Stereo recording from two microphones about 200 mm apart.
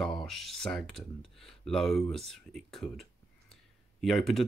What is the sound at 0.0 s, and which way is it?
Speech, centre (ahead or behind).